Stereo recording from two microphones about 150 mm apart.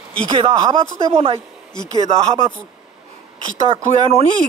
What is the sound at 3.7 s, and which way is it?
Speech, 40° right (ahead or behind).